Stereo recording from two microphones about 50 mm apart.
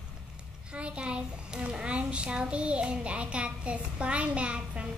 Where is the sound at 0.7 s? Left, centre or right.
Right.